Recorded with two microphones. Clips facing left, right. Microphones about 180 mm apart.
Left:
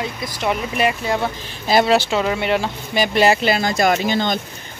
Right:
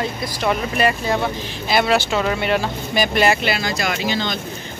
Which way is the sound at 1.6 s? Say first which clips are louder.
Left 3 dB; 35° left (ahead or behind).